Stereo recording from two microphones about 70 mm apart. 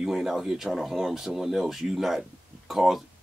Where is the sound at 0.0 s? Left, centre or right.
Centre.